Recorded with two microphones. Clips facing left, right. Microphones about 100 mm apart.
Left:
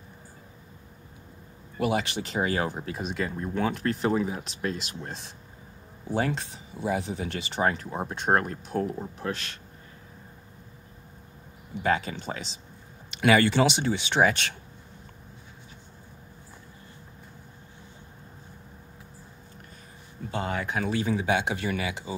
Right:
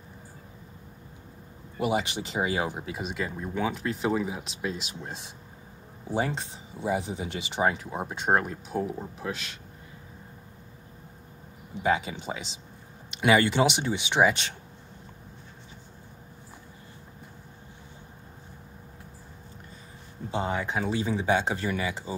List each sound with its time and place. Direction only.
1.8 s speech: 20° right (ahead or behind)
6.1 s speech: 20° right (ahead or behind); by 9.6 s 5° right (ahead or behind)
11.7 s speech: 15° right (ahead or behind)
20.2 s speech: 20° right (ahead or behind)